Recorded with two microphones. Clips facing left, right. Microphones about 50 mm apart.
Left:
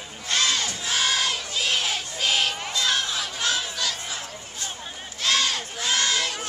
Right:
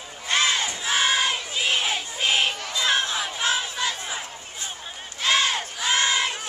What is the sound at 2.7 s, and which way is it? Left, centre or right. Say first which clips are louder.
Chatter: right 3 dB; right.